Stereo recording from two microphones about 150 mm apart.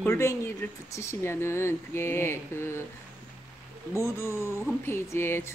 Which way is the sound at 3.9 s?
20° left (ahead or behind).